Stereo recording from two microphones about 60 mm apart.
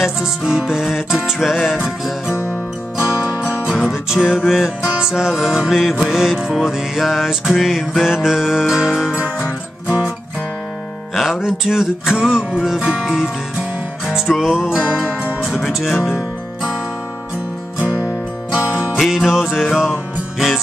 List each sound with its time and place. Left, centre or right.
0.0 s music: centre
3.6 s music: centre
11.1 s music: centre
18.5 s music: centre
18.9 s music: centre